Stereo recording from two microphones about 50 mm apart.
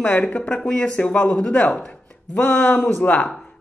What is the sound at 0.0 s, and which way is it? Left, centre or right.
Speech, left.